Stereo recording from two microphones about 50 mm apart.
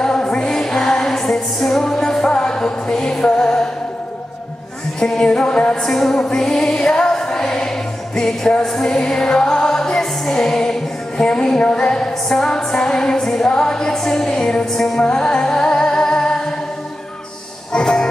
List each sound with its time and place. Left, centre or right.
0.0 s music: centre
5.0 s music: centre
17.7 s music: centre